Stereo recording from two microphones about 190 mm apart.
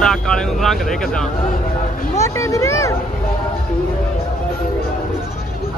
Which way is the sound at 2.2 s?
15° left (ahead or behind).